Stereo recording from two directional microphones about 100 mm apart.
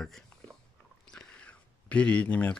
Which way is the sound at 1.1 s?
10° left (ahead or behind).